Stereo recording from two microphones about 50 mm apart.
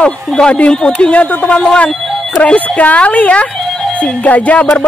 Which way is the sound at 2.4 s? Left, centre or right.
Left.